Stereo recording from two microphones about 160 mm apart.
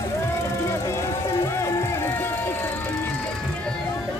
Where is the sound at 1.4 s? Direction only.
15° left (ahead or behind).